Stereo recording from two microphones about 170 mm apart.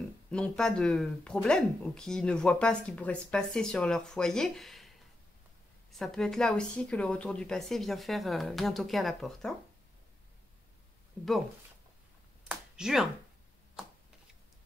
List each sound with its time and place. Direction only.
0.3 s speech: 5° left (ahead or behind)
12.4 s finger snapping: 5° right (ahead or behind)